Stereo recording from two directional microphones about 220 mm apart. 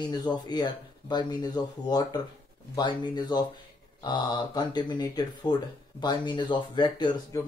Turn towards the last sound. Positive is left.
turn(degrees=15)  # may be behind; listen again after turning